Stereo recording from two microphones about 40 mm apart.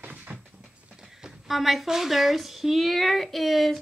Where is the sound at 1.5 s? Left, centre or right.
Centre.